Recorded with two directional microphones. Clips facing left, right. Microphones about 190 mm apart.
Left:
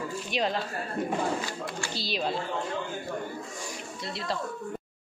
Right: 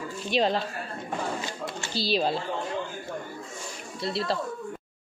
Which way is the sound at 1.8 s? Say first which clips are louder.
Right 7 dB; 30° right (ahead or behind).